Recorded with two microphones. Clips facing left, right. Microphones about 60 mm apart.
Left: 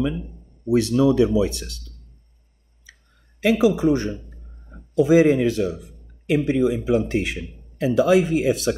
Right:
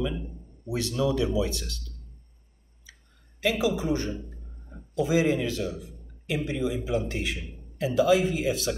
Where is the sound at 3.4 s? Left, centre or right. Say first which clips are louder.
Left 8 dB; left.